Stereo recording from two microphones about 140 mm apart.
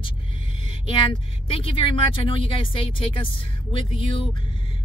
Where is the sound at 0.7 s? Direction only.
40° left (ahead or behind).